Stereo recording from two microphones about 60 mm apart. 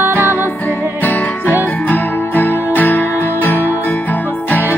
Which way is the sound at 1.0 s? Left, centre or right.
Left.